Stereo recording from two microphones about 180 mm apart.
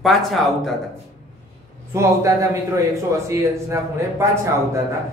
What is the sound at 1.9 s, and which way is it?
A man's voice, 15° right (ahead or behind).